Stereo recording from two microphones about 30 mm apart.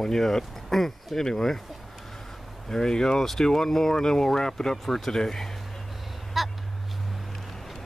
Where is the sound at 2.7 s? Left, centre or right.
Left.